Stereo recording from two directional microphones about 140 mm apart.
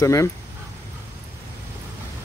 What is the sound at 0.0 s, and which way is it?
Speech, 20° left (ahead or behind).